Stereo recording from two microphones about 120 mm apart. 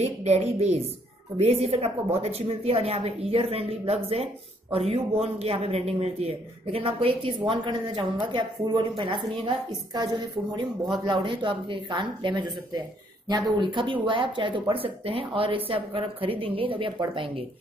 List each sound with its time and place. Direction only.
0.0 s a man's voice: 65° right (ahead or behind); by 17.5 s 45° right (ahead or behind)